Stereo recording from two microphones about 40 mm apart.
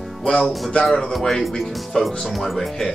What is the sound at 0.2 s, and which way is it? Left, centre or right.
Music, centre.